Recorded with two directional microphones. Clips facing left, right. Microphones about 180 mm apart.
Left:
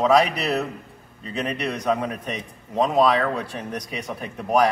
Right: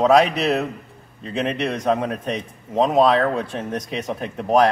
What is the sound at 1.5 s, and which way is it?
Speech, 20° right (ahead or behind).